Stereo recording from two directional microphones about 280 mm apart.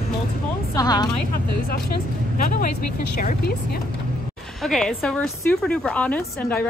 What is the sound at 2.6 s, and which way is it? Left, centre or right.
Speech, left.